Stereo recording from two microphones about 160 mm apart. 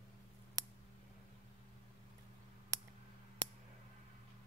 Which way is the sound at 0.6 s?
20° right (ahead or behind).